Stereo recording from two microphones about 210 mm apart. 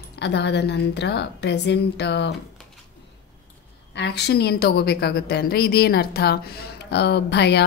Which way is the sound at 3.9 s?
55° left (ahead or behind).